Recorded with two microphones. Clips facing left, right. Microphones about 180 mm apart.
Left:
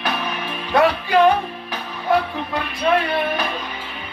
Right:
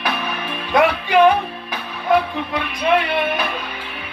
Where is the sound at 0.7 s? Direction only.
15° right (ahead or behind).